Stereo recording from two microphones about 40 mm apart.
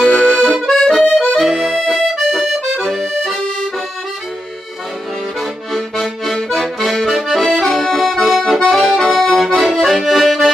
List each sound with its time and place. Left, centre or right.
0.0 s accordion: left
0.4 s accordion: centre
0.8 s accordion: centre
5.4 s accordion: centre